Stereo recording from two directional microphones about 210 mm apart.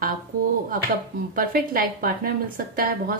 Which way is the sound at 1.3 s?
40° right (ahead or behind).